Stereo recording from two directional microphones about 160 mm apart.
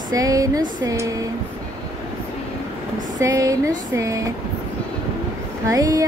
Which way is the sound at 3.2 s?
20° right (ahead or behind).